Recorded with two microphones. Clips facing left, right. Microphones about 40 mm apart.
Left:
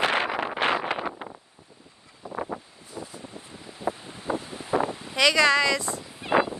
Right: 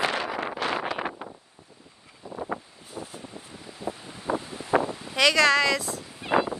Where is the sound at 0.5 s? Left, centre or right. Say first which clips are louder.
Left 4 dB; left.